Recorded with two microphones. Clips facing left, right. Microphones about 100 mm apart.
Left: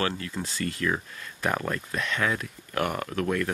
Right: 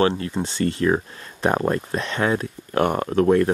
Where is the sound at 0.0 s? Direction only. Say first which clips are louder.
Right 9 dB; 30° right (ahead or behind).